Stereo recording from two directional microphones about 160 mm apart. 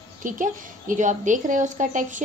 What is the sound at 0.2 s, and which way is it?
A woman's voice, 55° right (ahead or behind).